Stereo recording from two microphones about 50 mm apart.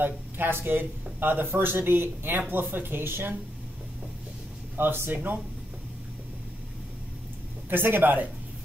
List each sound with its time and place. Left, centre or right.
0.0 s speech: right
4.7 s speech: right
7.7 s speech: right